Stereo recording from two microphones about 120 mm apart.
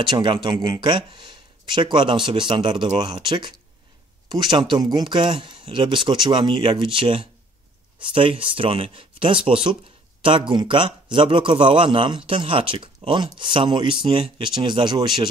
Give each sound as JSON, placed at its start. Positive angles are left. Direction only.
{"t": 0.0, "sound": "a man's voice", "side_deg": -40}